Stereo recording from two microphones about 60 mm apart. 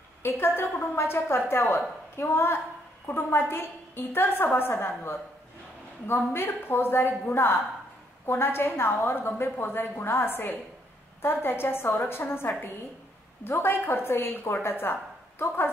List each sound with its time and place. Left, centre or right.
0.3 s a woman's voice: left